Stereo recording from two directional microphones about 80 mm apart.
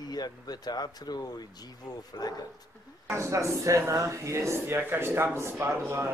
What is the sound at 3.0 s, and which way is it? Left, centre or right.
Speech, right.